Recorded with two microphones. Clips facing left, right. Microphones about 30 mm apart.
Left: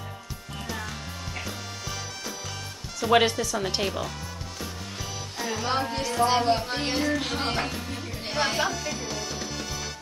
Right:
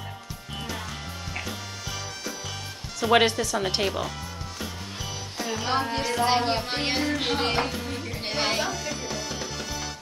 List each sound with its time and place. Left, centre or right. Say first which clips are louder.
1.3 s music: right 2 dB; centre
3.0 s speech: right 1 dB; centre
5.4 s music: even; centre
5.9 s music: right 2 dB; right
6.2 s speech: left 3 dB; right
7.2 s music: right 3 dB; right
7.6 s music: right 2 dB; centre
8.5 s music: left 1 dB; centre